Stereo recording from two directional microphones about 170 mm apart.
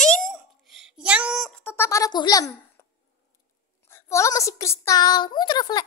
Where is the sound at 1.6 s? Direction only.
15° left (ahead or behind).